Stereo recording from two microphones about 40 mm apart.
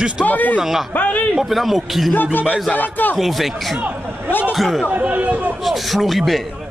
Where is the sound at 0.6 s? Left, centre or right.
Centre.